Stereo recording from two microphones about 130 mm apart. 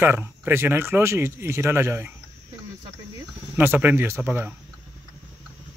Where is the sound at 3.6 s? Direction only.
15° right (ahead or behind).